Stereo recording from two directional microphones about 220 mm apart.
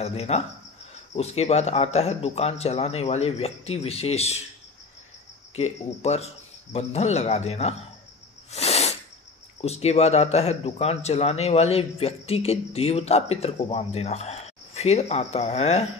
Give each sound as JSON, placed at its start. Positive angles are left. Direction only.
{"t": 0.0, "sound": "speech", "side_deg": 30}
{"t": 5.6, "sound": "speech", "side_deg": 30}
{"t": 8.5, "sound": "sneeze", "side_deg": 30}
{"t": 9.6, "sound": "speech", "side_deg": 30}